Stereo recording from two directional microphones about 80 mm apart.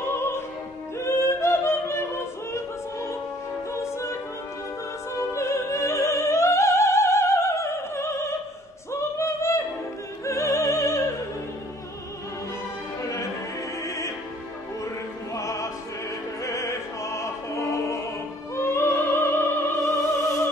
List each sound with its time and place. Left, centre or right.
0.0 s opera: left
0.9 s yodeling: left
2.5 s music: left
5.3 s opera: left
8.9 s singing: left
10.2 s opera: left
13.8 s music: left
15.3 s opera: left